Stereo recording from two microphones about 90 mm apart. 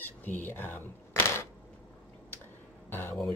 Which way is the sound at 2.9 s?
25° left (ahead or behind).